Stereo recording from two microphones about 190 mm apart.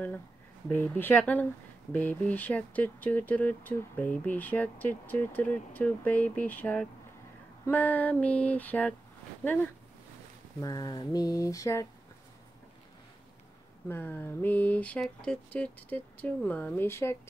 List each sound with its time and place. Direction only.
0.7 s speech: 10° left (ahead or behind)
10.6 s speech: 20° left (ahead or behind)
13.8 s speech: 10° left (ahead or behind)